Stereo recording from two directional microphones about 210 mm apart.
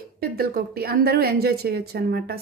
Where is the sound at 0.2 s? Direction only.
45° right (ahead or behind).